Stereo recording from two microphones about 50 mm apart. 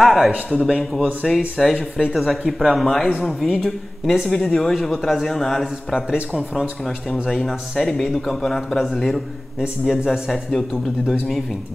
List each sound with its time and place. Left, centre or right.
0.0 s a man's voice: centre
7.2 s speech: centre